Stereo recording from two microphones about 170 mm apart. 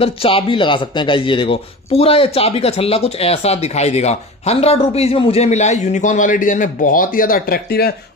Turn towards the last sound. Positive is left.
turn(degrees=65)  # may be behind; listen again after turning